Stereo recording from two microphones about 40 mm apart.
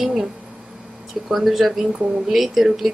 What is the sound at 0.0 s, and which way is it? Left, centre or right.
Speech, centre.